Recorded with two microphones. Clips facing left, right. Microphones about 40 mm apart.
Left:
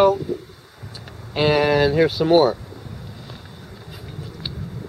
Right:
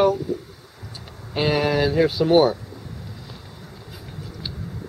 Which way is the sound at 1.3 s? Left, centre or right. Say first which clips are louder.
Left 3 dB; centre.